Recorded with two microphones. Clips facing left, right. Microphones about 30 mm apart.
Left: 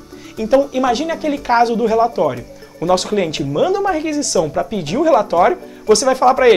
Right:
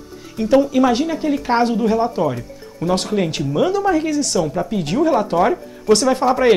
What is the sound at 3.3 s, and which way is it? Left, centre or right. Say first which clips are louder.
Speech: left 2 dB; left.